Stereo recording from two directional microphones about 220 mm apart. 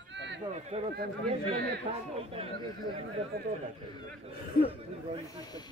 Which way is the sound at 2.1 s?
25° right (ahead or behind).